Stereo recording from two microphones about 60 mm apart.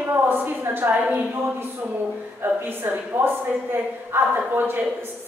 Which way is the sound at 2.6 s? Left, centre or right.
Right.